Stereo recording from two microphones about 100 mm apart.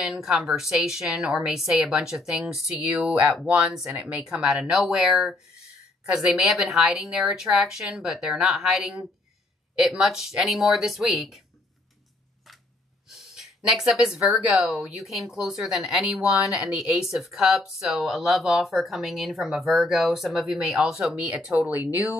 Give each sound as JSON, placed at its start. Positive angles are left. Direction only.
{"t": 0.0, "sound": "speech", "side_deg": -5}
{"t": 13.4, "sound": "speech", "side_deg": 0}